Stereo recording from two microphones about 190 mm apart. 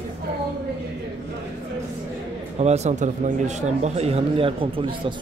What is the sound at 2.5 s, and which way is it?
A man's voice, 35° right (ahead or behind).